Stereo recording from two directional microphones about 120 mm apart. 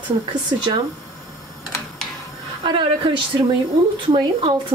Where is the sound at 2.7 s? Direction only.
40° right (ahead or behind).